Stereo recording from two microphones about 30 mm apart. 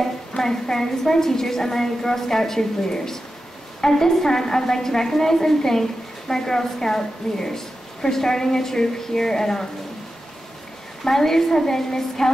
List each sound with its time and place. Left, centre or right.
0.4 s a woman's voice: centre
11.1 s a woman's voice: centre